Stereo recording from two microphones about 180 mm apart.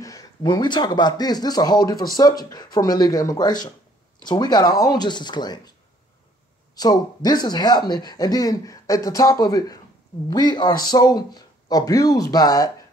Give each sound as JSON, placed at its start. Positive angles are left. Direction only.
{"t": 0.0, "sound": "speech", "side_deg": 20}
{"t": 6.7, "sound": "speech", "side_deg": 20}